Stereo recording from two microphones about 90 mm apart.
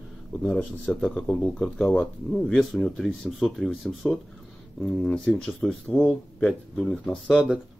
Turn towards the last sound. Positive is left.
turn(degrees=5)  # may be behind; listen again after turning